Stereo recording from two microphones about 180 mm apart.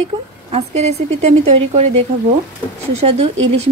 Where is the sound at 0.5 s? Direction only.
35° right (ahead or behind).